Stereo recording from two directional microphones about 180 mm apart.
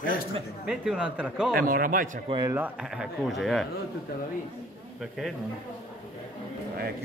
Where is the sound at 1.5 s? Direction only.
50° right (ahead or behind).